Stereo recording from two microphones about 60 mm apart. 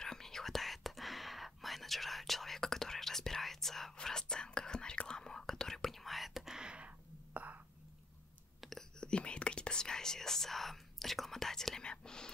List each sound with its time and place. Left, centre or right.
0.0 s whispering: centre
7.3 s whispering: right
8.5 s whispering: centre
9.0 s whispering: centre